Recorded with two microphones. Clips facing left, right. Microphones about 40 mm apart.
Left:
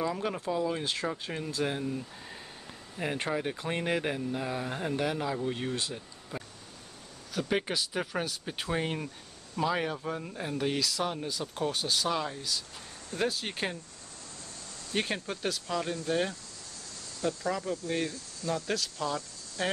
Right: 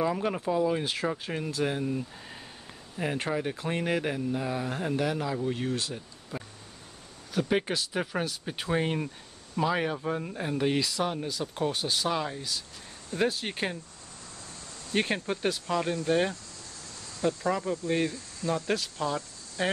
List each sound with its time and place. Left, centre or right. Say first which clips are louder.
0.2 s speech: right 4 dB; centre
1.9 s speech: right 3 dB; centre
3.0 s speech: right 2 dB; centre
14.9 s speech: right 4 dB; centre